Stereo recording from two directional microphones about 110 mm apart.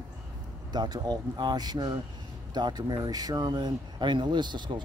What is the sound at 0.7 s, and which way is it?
Speech, 40° right (ahead or behind).